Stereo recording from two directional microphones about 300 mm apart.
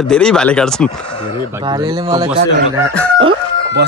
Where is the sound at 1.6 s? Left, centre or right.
Centre.